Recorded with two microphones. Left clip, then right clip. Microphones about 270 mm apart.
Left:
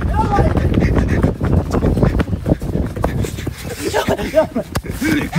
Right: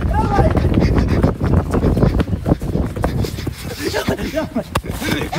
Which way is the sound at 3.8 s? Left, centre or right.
Centre.